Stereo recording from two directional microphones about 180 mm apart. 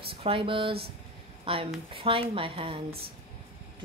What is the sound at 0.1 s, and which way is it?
A woman's voice, 30° right (ahead or behind).